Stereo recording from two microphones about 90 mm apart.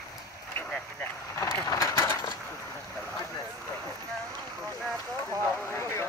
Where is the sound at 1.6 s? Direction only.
35° left (ahead or behind).